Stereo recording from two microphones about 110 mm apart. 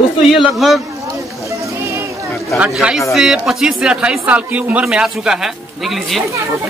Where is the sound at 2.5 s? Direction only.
10° right (ahead or behind).